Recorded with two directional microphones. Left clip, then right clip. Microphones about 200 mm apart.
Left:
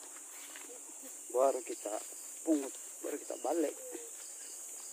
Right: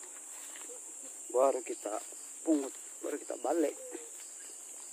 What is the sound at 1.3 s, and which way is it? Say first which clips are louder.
Speech: right 2 dB; 15° right (ahead or behind).